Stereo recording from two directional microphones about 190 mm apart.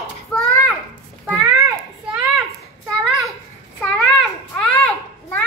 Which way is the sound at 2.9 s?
Centre (ahead or behind).